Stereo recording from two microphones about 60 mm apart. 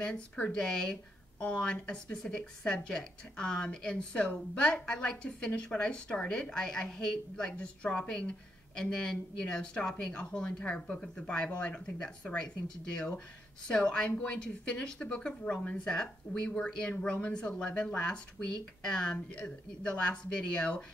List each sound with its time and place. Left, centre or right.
0.0 s a woman's voice: centre